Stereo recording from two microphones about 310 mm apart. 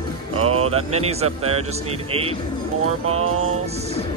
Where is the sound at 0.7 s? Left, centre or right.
Centre.